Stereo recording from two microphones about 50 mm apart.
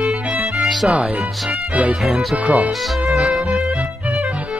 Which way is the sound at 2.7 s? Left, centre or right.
Centre.